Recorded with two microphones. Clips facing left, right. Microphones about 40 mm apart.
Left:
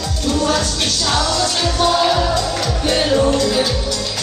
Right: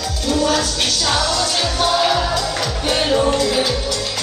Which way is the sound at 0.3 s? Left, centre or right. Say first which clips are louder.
Even; centre.